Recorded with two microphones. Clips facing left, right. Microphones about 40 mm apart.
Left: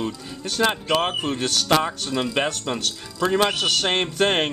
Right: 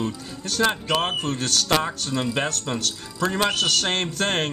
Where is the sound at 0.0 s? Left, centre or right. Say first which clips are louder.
Even; centre.